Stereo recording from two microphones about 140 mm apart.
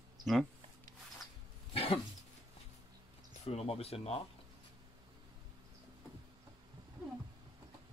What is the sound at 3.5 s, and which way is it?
Speech, 45° left (ahead or behind).